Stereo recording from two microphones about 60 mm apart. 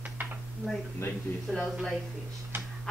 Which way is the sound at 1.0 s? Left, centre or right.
Left.